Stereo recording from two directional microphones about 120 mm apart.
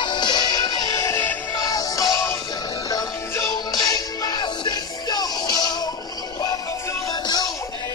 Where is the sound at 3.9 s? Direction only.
35° left (ahead or behind).